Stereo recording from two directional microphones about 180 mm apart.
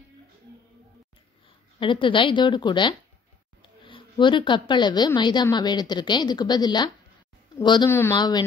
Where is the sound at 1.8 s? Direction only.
30° left (ahead or behind).